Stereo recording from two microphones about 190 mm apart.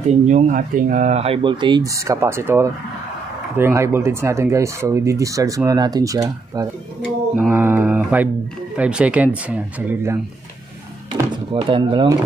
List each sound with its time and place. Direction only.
0.3 s speech: 40° right (ahead or behind); by 10.2 s 10° right (ahead or behind)
11.5 s speech: 25° right (ahead or behind)